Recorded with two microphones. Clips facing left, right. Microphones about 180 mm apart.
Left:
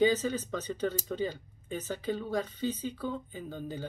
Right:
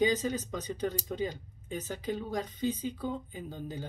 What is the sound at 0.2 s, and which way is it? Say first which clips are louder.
Speech: left 1 dB; 15° right (ahead or behind).